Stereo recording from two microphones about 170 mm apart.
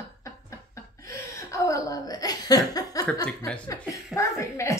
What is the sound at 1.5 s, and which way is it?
Speech, 20° left (ahead or behind).